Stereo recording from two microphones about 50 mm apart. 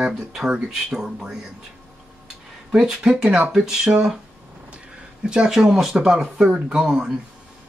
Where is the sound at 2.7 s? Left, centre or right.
Centre.